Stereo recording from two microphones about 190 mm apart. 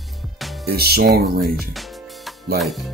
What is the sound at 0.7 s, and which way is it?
Speech, 55° right (ahead or behind).